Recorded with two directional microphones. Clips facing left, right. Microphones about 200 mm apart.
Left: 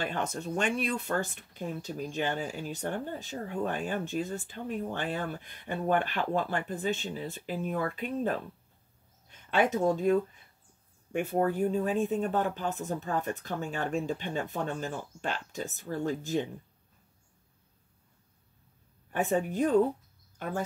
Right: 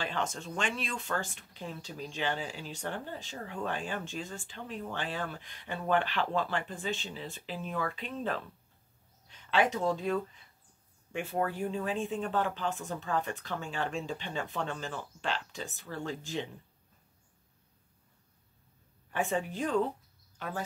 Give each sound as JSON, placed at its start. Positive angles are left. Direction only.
{"t": 0.0, "sound": "speech", "side_deg": 55}
{"t": 9.5, "sound": "speech", "side_deg": 50}
{"t": 19.3, "sound": "speech", "side_deg": 50}